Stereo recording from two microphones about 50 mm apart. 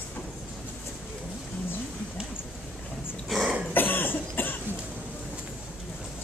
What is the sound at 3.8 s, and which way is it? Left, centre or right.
Cough, left.